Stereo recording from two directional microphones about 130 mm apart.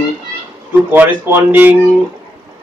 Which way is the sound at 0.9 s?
15° right (ahead or behind).